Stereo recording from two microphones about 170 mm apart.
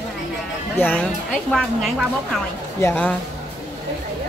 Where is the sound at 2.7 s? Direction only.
10° left (ahead or behind).